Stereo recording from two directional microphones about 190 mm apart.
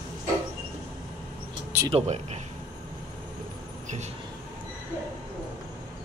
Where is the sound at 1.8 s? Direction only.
30° right (ahead or behind).